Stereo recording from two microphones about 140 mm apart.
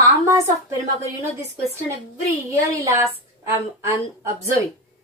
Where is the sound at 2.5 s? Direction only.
25° right (ahead or behind).